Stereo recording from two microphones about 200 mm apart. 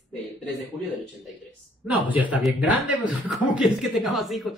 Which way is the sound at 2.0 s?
10° right (ahead or behind).